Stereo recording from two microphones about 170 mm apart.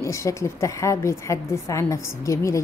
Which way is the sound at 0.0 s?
15° left (ahead or behind).